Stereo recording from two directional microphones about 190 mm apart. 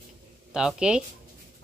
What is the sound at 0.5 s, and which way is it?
Speech, 5° right (ahead or behind).